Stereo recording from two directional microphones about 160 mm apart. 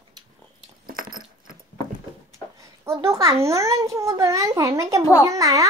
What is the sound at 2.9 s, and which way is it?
A child's voice, 15° right (ahead or behind).